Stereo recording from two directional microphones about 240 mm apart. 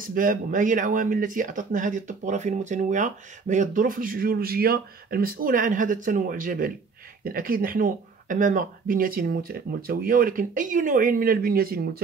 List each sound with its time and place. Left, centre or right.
0.0 s speech: right